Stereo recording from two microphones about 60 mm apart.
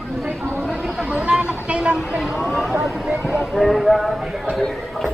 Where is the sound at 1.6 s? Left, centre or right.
Centre.